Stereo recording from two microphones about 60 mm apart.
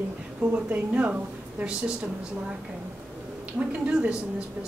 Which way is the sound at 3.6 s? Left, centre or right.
Right.